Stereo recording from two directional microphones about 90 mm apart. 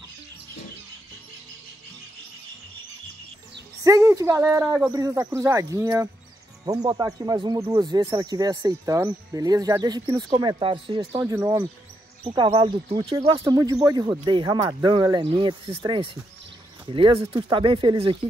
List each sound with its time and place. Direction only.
3.8 s speech: 40° right (ahead or behind)
4.6 s speech: 20° right (ahead or behind)
4.9 s speech: 40° right (ahead or behind)
6.6 s speech: 50° right (ahead or behind); by 13.3 s 75° right (ahead or behind)
13.4 s speech: 40° right (ahead or behind)
14.2 s speech: 60° right (ahead or behind)
14.6 s speech: 40° right (ahead or behind)
14.9 s speech: 55° right (ahead or behind)
15.2 s speech: 80° right
16.8 s speech: 75° right (ahead or behind)